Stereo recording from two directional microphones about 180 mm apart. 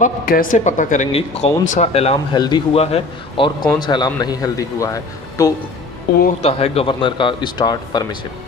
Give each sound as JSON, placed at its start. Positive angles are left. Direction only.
{"t": 0.0, "sound": "speech", "side_deg": 50}
{"t": 2.3, "sound": "speech", "side_deg": 25}
{"t": 6.4, "sound": "speech", "side_deg": 35}